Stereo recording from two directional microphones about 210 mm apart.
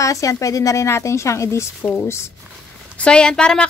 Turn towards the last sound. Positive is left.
turn(degrees=5)  # may be behind; listen again after turning